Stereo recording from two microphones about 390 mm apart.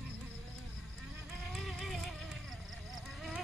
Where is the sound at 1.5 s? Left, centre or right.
Centre.